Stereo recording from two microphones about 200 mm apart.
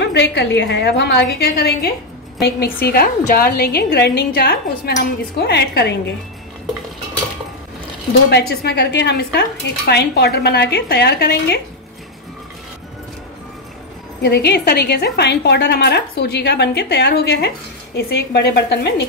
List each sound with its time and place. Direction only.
0.0 s a woman's voice: 60° left (ahead or behind)
8.3 s a woman's voice: 55° left (ahead or behind)
14.2 s a woman's voice: 55° left (ahead or behind)